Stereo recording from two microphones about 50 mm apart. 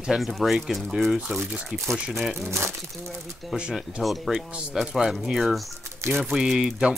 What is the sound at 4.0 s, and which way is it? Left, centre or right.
Speech, centre.